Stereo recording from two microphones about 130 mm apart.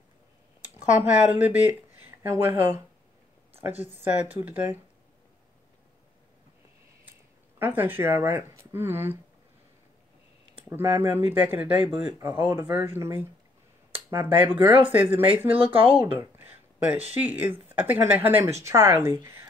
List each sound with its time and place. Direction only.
1.0 s speech: 10° right (ahead or behind)
4.3 s speech: 15° right (ahead or behind)
7.5 s speech: 15° right (ahead or behind)
10.8 s speech: 20° right (ahead or behind)
15.6 s speech: 45° right (ahead or behind)
16.1 s speech: 15° right (ahead or behind)